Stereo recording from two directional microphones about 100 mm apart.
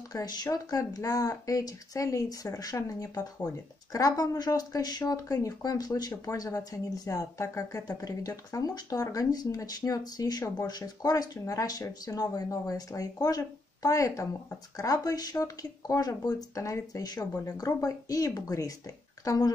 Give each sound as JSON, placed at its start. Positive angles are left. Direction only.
{"t": 0.1, "sound": "speech", "side_deg": 40}